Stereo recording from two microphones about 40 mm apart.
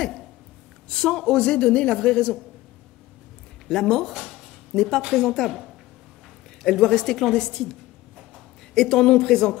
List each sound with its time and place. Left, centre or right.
0.0 s a sound: centre
0.8 s a woman's voice: centre
3.6 s a woman's voice: centre
4.1 s speech: centre
4.7 s a woman's voice: centre
6.6 s a woman's voice: centre
8.7 s a woman's voice: centre